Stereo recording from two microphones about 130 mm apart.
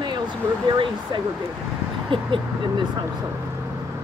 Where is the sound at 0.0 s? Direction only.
35° right (ahead or behind).